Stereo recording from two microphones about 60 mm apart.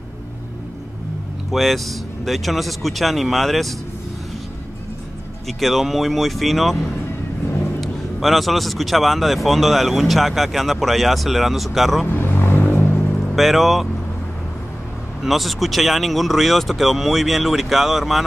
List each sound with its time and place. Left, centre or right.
1.5 s a man's voice: centre
5.5 s a man's voice: centre
12.1 s music: left
13.4 s a man's voice: centre
15.2 s a man's voice: centre